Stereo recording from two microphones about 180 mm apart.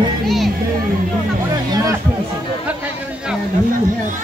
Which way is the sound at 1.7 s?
20° right (ahead or behind).